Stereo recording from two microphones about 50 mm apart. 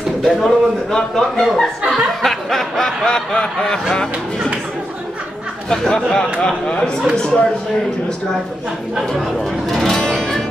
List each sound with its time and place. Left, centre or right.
0.2 s speech: centre
5.7 s speech: centre
9.1 s speech: centre
9.7 s music: centre